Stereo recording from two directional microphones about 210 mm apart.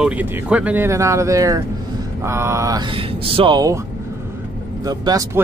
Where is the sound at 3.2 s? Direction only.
25° right (ahead or behind).